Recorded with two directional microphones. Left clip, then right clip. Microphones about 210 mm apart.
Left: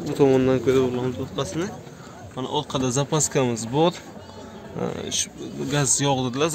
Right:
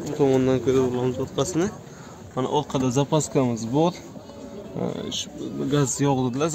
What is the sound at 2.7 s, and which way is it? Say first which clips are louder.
Speech: right 1 dB; centre (ahead or behind).